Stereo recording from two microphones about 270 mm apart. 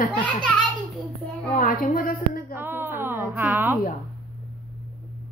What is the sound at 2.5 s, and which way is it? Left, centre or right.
Speech, centre.